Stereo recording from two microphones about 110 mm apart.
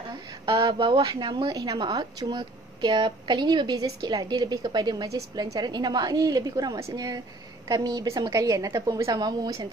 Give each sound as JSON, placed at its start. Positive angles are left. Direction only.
{"t": 0.5, "sound": "a woman's voice", "side_deg": -30}
{"t": 0.7, "sound": "speech", "side_deg": -50}
{"t": 1.5, "sound": "a woman's voice", "side_deg": -35}